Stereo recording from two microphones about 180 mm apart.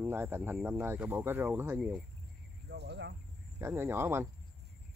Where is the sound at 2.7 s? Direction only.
70° right (ahead or behind).